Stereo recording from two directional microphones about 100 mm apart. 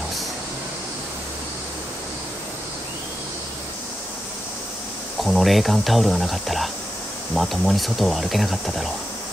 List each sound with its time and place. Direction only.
5.2 s speech: centre (ahead or behind)